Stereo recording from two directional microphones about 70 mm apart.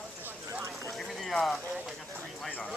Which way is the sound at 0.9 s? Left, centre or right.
Centre.